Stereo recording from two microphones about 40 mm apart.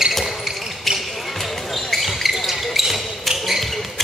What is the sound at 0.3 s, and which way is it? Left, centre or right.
Basketball bounce, centre.